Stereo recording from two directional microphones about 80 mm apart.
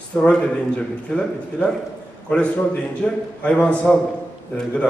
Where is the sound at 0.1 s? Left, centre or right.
Centre.